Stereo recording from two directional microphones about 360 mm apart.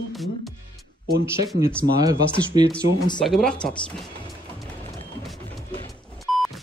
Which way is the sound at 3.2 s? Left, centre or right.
Centre.